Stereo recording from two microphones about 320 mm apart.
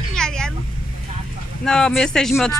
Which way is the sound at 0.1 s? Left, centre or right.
Centre.